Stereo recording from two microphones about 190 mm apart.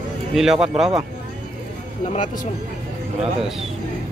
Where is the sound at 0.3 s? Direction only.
Centre (ahead or behind).